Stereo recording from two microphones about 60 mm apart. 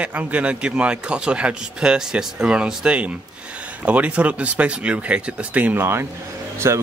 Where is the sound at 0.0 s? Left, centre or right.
Right.